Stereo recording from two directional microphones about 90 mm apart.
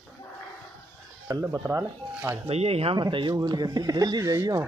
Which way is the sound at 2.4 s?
90° right.